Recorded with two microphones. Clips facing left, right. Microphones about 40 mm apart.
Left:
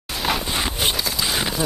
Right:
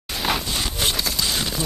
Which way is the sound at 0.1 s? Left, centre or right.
Centre.